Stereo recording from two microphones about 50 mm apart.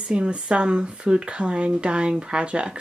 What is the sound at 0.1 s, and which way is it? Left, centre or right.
Speech, right.